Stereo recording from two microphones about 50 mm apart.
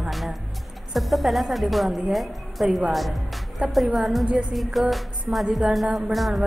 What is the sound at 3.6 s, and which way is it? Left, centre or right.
Speech, right.